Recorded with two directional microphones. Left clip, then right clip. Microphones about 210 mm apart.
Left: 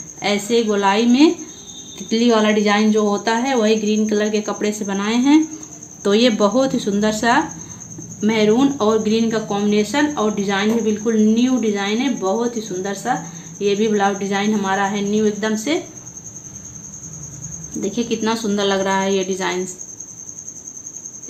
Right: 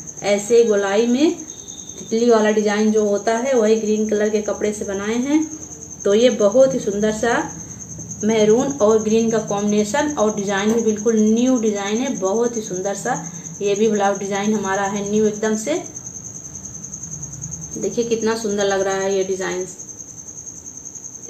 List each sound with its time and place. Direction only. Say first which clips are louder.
0.2 s a woman's voice: right 4 dB; 50° left (ahead or behind)
17.9 s a woman's voice: right 2 dB; 50° left (ahead or behind)